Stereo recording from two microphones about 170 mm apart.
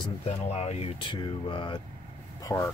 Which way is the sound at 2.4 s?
15° left (ahead or behind).